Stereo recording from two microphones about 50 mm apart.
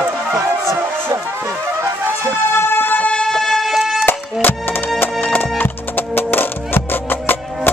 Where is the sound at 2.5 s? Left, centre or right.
Left.